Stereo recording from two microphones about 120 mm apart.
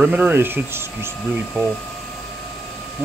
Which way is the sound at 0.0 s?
15° right (ahead or behind).